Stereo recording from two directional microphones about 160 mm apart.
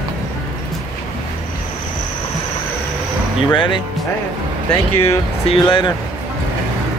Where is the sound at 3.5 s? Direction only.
30° left (ahead or behind).